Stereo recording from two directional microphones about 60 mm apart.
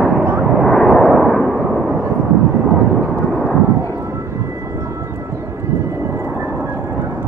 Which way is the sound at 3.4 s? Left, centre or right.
Left.